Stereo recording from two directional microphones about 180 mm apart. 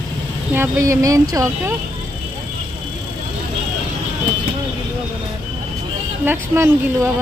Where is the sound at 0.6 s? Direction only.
15° right (ahead or behind).